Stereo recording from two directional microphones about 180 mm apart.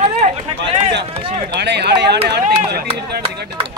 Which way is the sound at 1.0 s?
30° right (ahead or behind).